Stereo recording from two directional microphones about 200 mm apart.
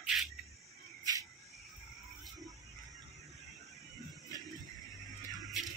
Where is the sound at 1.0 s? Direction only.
15° right (ahead or behind).